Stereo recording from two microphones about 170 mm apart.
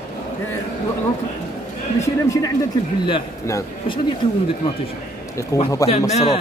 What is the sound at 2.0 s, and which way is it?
Speech, 20° left (ahead or behind).